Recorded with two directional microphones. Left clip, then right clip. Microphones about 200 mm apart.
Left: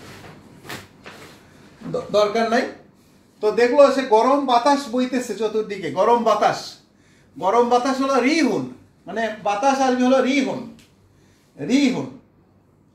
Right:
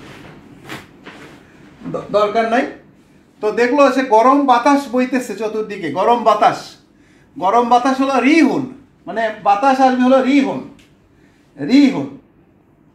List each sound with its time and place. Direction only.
2.1 s speech: 20° left (ahead or behind)
11.5 s speech: 15° left (ahead or behind)